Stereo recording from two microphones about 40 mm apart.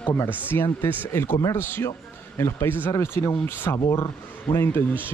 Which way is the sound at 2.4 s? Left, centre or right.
Left.